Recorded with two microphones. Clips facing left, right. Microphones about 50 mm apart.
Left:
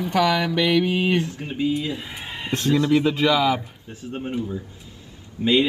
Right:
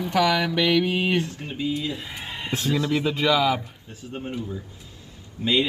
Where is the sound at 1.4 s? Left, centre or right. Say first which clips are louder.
Left 4 dB; centre.